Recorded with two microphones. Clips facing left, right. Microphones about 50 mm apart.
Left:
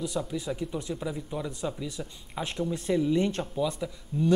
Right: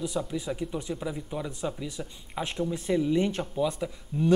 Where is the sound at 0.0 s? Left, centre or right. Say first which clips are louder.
Right 1 dB; centre.